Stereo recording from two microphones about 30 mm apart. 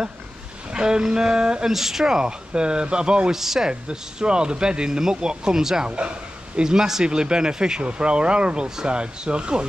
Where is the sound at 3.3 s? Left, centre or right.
Centre.